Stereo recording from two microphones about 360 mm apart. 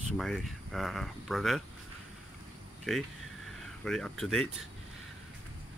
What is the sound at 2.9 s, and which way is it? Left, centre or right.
Speech, centre.